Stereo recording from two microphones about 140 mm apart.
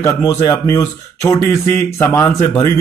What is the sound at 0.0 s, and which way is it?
Speech, 20° left (ahead or behind).